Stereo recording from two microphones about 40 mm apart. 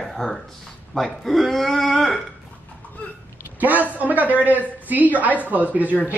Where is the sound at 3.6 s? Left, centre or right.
Right.